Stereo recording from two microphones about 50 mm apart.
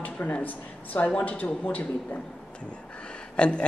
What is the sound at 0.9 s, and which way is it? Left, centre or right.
Speech, left.